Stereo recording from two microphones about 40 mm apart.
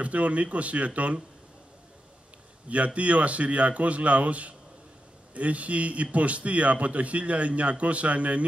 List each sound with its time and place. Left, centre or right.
0.0 s a man's voice: right
2.7 s a man's voice: right